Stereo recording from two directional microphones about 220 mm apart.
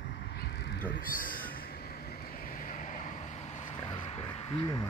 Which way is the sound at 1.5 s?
45° left (ahead or behind).